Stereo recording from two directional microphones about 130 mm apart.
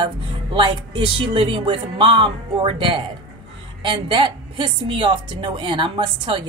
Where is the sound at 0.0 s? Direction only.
40° right (ahead or behind).